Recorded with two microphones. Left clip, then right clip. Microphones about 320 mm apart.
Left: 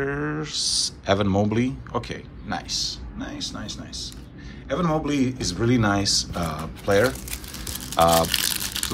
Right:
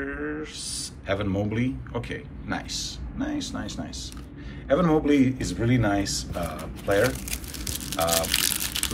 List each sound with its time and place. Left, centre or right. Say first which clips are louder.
0.0 s speech: left 4 dB; centre
7.2 s crumpling: even; centre